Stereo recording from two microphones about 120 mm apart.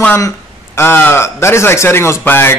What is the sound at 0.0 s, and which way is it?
A man's voice, 20° left (ahead or behind).